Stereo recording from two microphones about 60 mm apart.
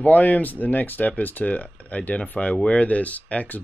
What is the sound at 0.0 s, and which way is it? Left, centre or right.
Speech, left.